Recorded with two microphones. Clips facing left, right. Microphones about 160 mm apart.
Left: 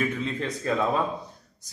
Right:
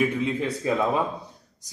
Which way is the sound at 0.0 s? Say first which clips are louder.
Right 4 dB; 10° right (ahead or behind).